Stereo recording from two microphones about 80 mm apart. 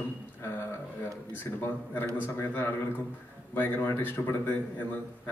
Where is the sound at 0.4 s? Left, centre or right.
Left.